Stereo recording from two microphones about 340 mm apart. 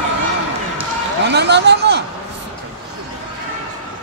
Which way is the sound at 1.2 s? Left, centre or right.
Right.